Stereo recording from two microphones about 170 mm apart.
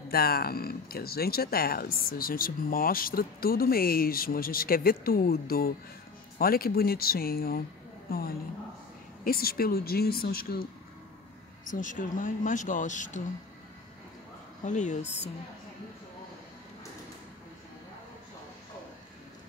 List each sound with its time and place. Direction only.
0.1 s speech: 65° left (ahead or behind)
11.6 s speech: 50° left (ahead or behind)
14.6 s speech: 45° left (ahead or behind)